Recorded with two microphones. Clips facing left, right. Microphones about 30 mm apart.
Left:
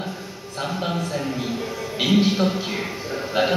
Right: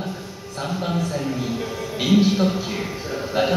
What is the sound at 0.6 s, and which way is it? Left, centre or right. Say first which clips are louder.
A man's voice: right 1 dB; centre.